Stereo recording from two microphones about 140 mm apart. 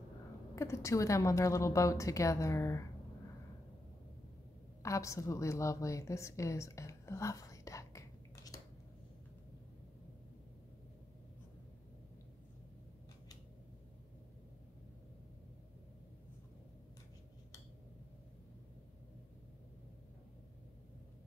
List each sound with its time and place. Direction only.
0.6 s a woman's voice: 20° left (ahead or behind)
4.8 s a woman's voice: 20° left (ahead or behind)